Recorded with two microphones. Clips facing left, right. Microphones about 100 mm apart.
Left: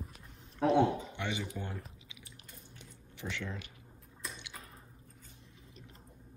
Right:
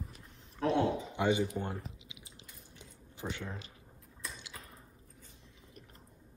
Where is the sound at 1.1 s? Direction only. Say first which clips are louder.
Right 8 dB; 35° right (ahead or behind).